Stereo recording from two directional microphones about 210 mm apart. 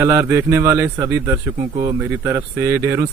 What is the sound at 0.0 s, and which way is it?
Speech, 10° right (ahead or behind).